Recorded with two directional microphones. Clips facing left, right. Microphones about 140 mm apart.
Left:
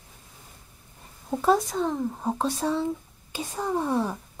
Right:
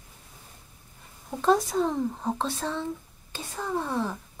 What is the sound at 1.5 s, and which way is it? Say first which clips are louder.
Speech: even; centre (ahead or behind).